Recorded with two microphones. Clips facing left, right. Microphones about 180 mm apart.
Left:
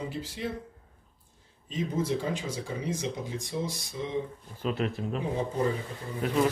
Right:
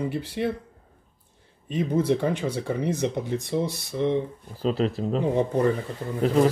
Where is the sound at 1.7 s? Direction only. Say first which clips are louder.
Right 6 dB; 60° right (ahead or behind).